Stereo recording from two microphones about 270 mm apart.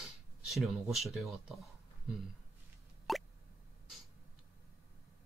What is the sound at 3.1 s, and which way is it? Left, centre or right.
Plop, centre.